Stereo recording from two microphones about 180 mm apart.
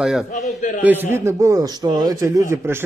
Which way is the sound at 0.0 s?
5° right (ahead or behind).